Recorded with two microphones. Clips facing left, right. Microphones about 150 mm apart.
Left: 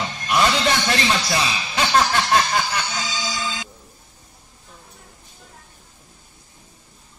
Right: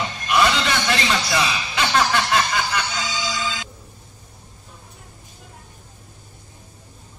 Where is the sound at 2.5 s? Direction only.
45° left (ahead or behind).